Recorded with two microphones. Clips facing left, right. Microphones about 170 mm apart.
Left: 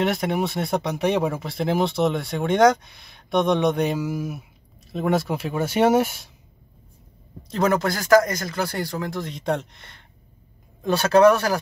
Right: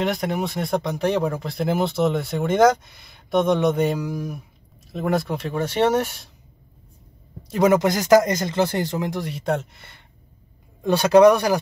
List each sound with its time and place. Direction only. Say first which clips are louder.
0.0 s speech: left 1 dB; centre (ahead or behind)
7.4 s speech: right 4 dB; 10° right (ahead or behind)